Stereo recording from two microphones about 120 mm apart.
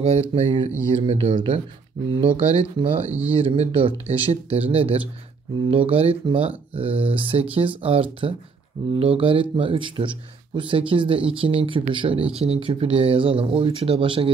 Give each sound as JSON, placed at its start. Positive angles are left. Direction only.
{"t": 0.0, "sound": "speech", "side_deg": -50}
{"t": 3.1, "sound": "speech", "side_deg": -15}
{"t": 3.3, "sound": "speech", "side_deg": -50}